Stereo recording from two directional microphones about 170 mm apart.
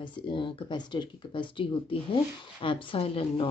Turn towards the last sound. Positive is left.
turn(degrees=35)  # may be behind; listen again after turning